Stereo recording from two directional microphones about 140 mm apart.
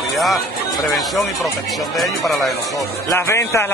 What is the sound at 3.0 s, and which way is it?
Speech, 20° left (ahead or behind).